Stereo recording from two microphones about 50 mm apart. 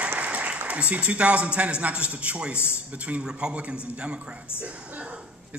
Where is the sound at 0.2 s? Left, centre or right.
Right.